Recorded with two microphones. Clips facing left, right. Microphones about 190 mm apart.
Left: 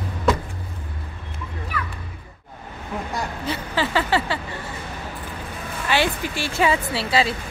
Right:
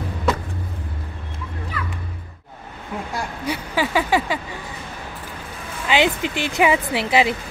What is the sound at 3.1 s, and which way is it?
Vehicle, 10° right (ahead or behind).